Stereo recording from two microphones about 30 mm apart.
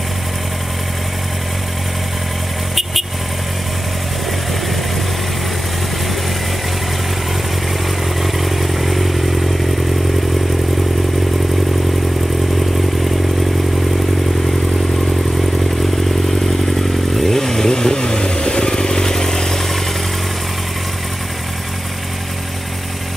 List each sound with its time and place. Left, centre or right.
2.7 s vehicle: centre
8.2 s vehicle: centre
16.7 s motorcycle: centre